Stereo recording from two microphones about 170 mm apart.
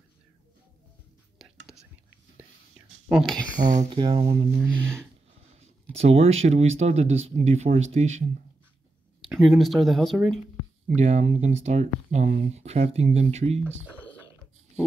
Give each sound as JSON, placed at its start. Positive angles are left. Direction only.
{"t": 3.1, "sound": "speech", "side_deg": 0}
{"t": 3.5, "sound": "speech", "side_deg": -50}
{"t": 3.9, "sound": "speech", "side_deg": -30}
{"t": 4.7, "sound": "speech", "side_deg": -15}
{"t": 5.9, "sound": "speech", "side_deg": -35}
{"t": 9.3, "sound": "speech", "side_deg": 0}
{"t": 11.0, "sound": "speech", "side_deg": -45}